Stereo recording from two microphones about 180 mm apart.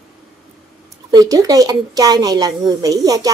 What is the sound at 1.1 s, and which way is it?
Speech, 20° right (ahead or behind).